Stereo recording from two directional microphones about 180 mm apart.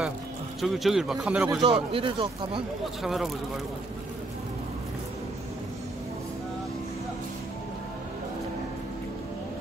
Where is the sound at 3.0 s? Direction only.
Centre (ahead or behind).